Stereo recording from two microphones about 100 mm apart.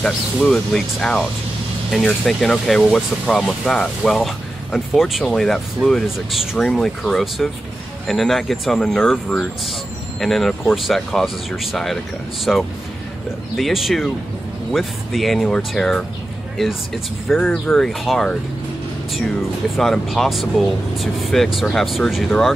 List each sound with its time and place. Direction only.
0.0 s speech: 5° left (ahead or behind)
19.8 s speech: 5° left (ahead or behind)